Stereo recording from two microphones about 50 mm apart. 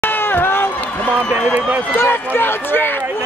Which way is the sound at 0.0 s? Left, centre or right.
Left.